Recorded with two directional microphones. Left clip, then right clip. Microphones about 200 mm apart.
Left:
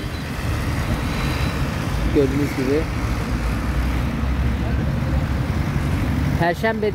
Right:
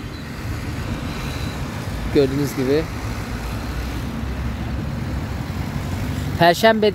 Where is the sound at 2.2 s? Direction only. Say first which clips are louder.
Right 2 dB; 65° right (ahead or behind).